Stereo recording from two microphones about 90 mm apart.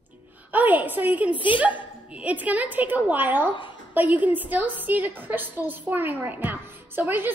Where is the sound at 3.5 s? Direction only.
60° left (ahead or behind).